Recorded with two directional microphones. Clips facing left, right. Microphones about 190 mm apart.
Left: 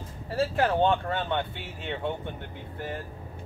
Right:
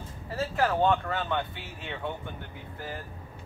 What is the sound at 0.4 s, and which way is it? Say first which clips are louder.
Speech: left 2 dB; 30° left (ahead or behind).